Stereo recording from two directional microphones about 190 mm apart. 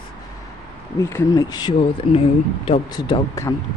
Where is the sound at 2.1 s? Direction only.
30° left (ahead or behind).